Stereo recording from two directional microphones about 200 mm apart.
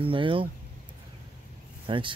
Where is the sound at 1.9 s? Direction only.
25° right (ahead or behind).